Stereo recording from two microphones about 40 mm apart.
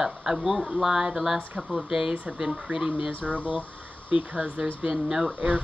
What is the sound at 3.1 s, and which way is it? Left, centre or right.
Speech, right.